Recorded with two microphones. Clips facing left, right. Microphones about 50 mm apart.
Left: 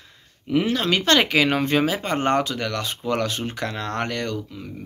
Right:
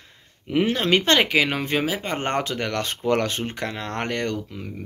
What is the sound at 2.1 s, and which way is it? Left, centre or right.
Speech, right.